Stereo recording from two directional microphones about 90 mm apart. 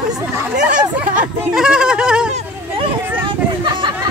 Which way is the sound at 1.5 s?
10° right (ahead or behind).